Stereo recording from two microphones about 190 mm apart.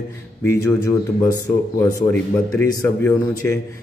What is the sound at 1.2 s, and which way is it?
A man's voice, 20° left (ahead or behind).